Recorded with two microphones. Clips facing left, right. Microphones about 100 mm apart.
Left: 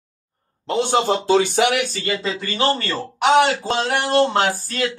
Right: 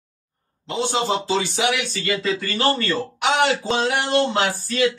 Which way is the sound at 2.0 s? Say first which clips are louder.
Right 1 dB; 20° left (ahead or behind).